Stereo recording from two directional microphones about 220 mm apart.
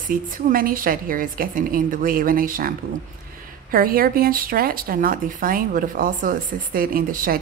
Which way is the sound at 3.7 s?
40° right (ahead or behind).